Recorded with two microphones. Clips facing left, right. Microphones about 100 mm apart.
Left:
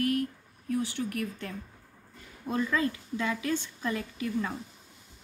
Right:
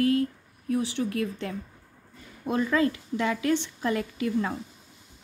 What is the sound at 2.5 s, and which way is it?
Speech, 35° right (ahead or behind).